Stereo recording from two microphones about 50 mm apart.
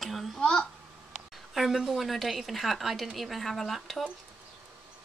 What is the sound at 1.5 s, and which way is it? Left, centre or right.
A woman's voice, centre.